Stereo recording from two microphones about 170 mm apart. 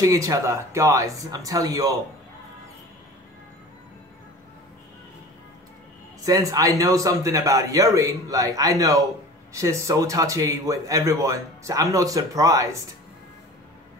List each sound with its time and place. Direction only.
0.0 s a man's voice: 20° right (ahead or behind)
6.2 s a man's voice: 20° right (ahead or behind)